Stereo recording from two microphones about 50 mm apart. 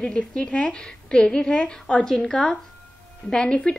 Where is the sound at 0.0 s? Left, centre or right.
Left.